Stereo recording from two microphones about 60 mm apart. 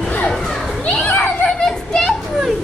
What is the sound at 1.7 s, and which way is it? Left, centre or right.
Speech, centre.